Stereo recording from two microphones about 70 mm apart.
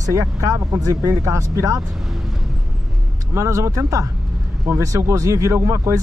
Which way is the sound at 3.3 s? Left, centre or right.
Right.